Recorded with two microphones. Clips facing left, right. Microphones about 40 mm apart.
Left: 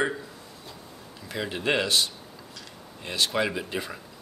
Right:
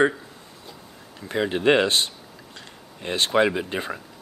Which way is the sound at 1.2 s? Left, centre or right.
Right.